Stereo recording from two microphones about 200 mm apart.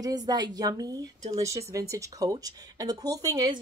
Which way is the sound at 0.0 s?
20° right (ahead or behind).